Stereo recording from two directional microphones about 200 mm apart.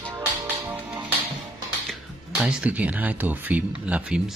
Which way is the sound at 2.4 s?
5° right (ahead or behind).